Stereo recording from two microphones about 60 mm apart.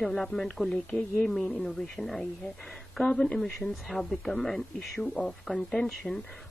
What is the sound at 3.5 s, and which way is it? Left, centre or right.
A woman's voice, centre.